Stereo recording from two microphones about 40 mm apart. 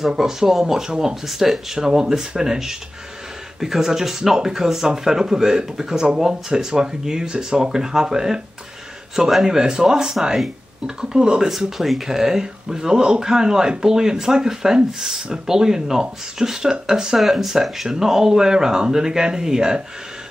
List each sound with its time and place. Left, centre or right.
0.1 s speech: centre
17.2 s speech: centre